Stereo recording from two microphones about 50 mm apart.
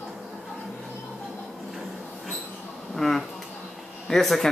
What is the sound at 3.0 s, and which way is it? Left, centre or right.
Speech, centre.